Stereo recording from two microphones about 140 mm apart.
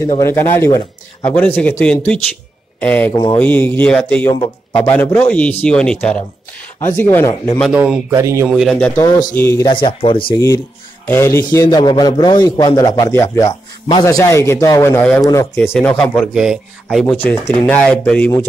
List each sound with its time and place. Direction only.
0.2 s speech: 15° left (ahead or behind)
3.1 s speech: 30° left (ahead or behind)
3.3 s speech: 10° left (ahead or behind)
7.6 s speech: 5° right (ahead or behind)
8.1 s a man's voice: 20° right (ahead or behind)
8.5 s speech: centre (ahead or behind)
8.7 s speech: 10° left (ahead or behind)
9.0 s a man's voice: 20° left (ahead or behind)
9.7 s speech: 35° left (ahead or behind)
10.3 s a man's voice: 20° left (ahead or behind)
11.8 s a man's voice: 30° left (ahead or behind); by 16.5 s centre (ahead or behind)
17.1 s speech: 10° left (ahead or behind)